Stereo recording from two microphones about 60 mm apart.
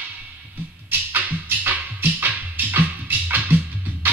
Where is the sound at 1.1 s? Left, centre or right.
Right.